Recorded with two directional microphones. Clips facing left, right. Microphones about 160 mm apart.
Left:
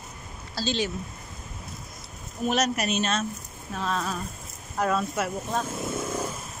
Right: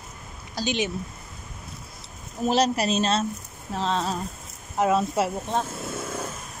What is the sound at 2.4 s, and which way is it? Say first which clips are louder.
A woman's voice: right 3 dB; 30° right (ahead or behind).